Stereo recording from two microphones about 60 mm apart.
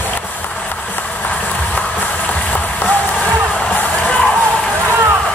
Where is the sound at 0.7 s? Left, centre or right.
Left.